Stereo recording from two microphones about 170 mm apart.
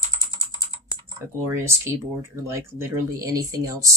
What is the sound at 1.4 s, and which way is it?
Speech, 15° right (ahead or behind).